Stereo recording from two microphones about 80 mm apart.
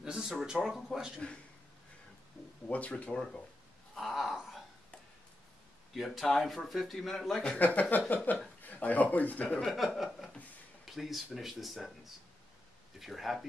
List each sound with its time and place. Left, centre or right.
0.0 s speech: centre
2.7 s speech: centre
3.9 s a sound: centre
5.9 s speech: centre
7.5 s speech: centre
9.7 s speech: centre